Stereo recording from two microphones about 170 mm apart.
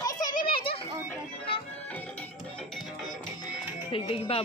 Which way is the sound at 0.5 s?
35° left (ahead or behind).